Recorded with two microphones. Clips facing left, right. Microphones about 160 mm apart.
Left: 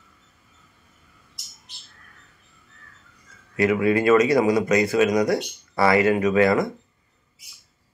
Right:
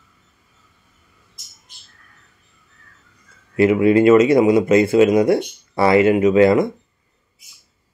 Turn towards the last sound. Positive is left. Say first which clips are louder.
# right 6 dB
turn(degrees=-25)  # may be behind; listen again after turning